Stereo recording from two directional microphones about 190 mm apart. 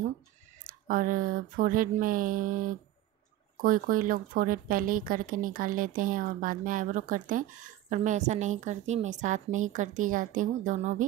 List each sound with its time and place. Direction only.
0.7 s a woman's voice: 45° right (ahead or behind)